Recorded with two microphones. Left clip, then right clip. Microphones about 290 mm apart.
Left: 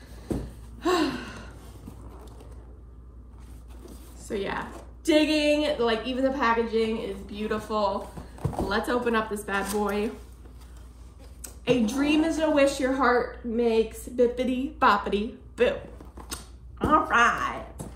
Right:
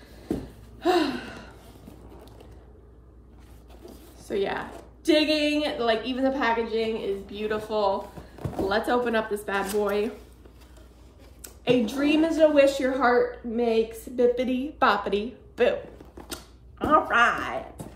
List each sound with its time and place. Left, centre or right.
0.7 s gasp: centre
3.9 s a woman's voice: centre
6.4 s a woman's voice: right
7.2 s speech: centre
11.4 s a woman's voice: centre
16.3 s a sound: centre